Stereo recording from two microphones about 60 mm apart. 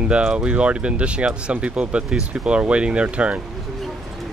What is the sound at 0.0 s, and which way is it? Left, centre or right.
Speech, centre.